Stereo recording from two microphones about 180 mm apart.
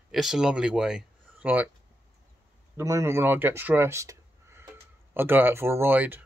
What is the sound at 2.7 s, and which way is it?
Speech, 15° right (ahead or behind).